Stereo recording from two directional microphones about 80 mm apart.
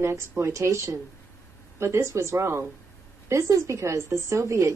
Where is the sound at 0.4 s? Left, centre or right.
Right.